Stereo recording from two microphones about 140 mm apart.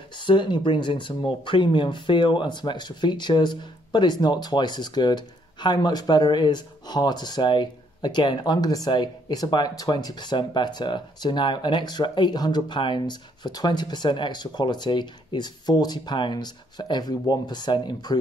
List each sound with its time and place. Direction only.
0.2 s speech: 35° left (ahead or behind)